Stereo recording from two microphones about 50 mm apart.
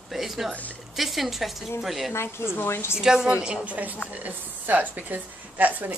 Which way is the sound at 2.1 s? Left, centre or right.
Left.